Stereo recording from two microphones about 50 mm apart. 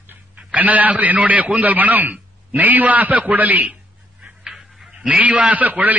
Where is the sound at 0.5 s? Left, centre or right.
Right.